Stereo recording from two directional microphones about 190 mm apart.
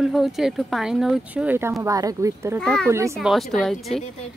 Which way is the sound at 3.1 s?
Centre (ahead or behind).